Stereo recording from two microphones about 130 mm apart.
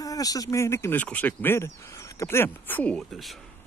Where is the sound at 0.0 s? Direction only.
25° left (ahead or behind).